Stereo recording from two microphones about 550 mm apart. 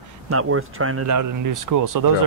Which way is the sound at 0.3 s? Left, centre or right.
Right.